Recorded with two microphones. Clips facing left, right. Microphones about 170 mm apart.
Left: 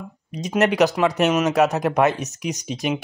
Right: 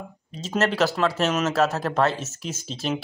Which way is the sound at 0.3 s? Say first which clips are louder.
Left 4 dB; 15° left (ahead or behind).